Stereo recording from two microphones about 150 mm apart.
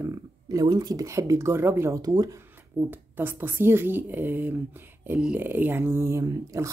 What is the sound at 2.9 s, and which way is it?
Speech, 15° right (ahead or behind).